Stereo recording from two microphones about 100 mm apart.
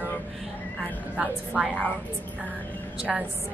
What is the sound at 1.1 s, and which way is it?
Speech, 5° right (ahead or behind).